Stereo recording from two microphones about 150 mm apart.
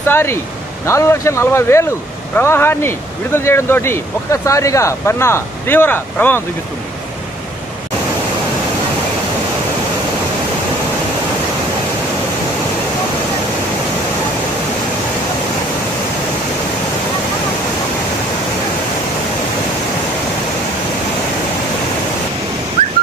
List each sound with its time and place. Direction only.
0.0 s speech: 15° left (ahead or behind)